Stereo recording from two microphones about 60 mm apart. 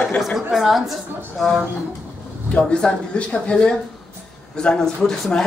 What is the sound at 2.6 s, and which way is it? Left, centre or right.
Speech, centre.